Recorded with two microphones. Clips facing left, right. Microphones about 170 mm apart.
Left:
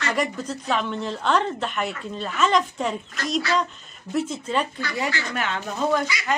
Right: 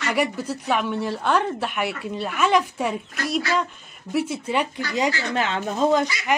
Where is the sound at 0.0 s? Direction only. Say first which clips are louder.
Right 2 dB; 10° right (ahead or behind).